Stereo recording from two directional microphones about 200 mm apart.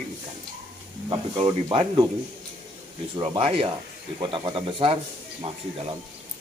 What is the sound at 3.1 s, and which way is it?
Speech, 25° right (ahead or behind).